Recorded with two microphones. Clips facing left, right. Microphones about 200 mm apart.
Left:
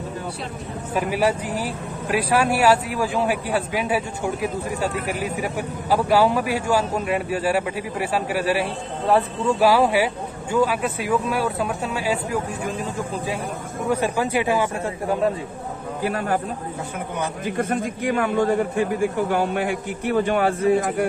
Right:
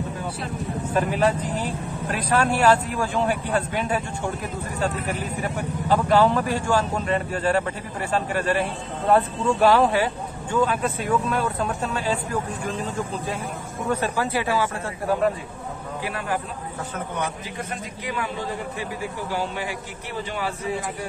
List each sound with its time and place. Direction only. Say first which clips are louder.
0.9 s speech: left 1 dB; 10° left (ahead or behind)
13.8 s speech: left 3 dB; 10° left (ahead or behind)
16.0 s a man's voice: left 5 dB; 45° left (ahead or behind)
17.5 s a man's voice: left 9 dB; 50° left (ahead or behind)